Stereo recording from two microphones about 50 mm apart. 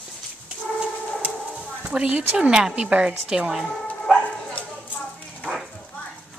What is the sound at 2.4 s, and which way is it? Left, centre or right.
A woman's voice, centre.